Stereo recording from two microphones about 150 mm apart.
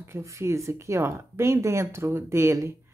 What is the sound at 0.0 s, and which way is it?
Speech, 20° right (ahead or behind).